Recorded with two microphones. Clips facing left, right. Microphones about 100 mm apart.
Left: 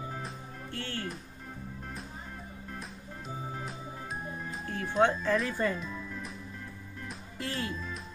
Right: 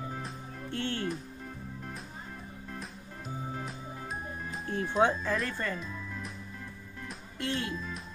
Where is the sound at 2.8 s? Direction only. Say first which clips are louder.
Even; centre (ahead or behind).